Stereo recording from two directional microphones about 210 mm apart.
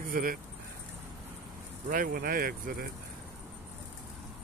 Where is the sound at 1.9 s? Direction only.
40° right (ahead or behind).